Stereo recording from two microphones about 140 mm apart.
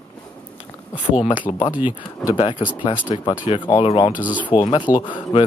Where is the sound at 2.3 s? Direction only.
35° left (ahead or behind).